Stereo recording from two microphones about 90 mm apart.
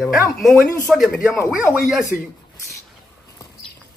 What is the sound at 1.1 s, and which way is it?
Speech, 30° left (ahead or behind).